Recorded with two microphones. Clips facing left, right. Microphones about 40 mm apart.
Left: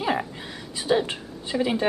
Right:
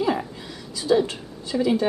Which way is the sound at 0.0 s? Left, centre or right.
Left.